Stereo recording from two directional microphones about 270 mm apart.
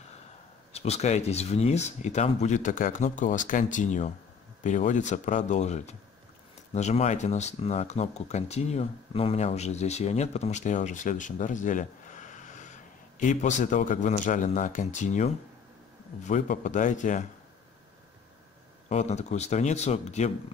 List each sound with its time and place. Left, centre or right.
0.7 s speech: left
18.9 s speech: left